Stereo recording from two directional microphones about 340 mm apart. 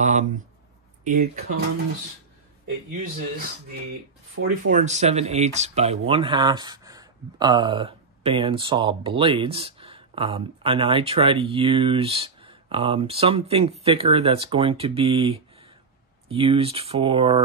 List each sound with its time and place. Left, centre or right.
0.0 s speech: right
4.6 s speech: right